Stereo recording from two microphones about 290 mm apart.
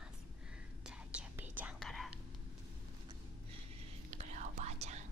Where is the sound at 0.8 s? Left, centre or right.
Centre.